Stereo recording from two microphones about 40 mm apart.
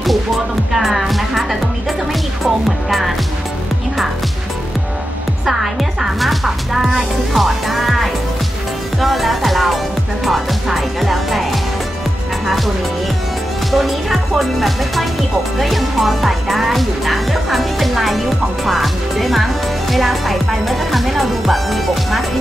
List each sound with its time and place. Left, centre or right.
0.7 s music: centre
5.4 s music: centre
12.4 s music: centre
18.7 s speech: centre